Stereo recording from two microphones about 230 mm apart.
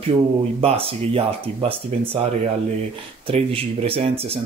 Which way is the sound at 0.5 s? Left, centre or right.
Right.